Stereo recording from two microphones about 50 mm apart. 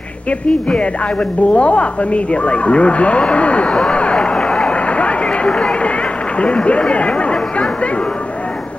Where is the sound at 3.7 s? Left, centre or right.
Centre.